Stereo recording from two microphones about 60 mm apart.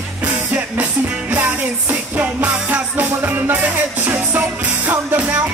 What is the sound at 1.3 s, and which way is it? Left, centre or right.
Music, right.